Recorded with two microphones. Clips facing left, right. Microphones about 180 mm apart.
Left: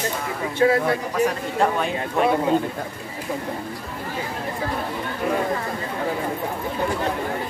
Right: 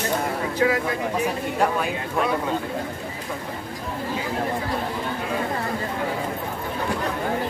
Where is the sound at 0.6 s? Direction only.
35° left (ahead or behind).